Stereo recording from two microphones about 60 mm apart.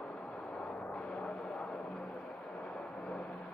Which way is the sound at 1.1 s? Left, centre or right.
Centre.